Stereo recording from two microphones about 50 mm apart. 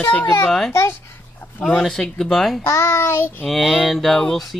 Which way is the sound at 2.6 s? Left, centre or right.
Left.